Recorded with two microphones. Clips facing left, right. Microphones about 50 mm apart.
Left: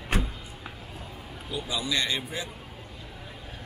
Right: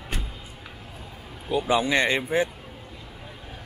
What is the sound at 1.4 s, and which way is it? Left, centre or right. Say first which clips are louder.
Speech: right 9 dB; right.